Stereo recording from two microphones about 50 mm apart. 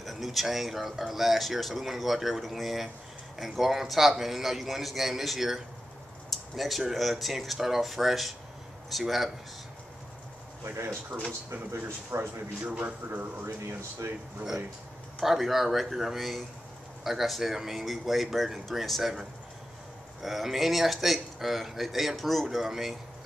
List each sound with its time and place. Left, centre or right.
0.0 s speech: centre
6.3 s a sound: centre
6.8 s speech: centre
10.6 s speech: right
12.6 s speech: right
13.7 s speech: right
15.1 s speech: centre